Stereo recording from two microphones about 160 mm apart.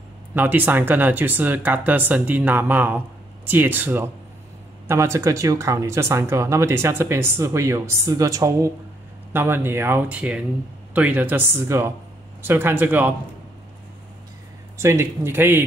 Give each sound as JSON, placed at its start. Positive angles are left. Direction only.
{"t": 0.3, "sound": "speech", "side_deg": -10}
{"t": 14.8, "sound": "speech", "side_deg": -15}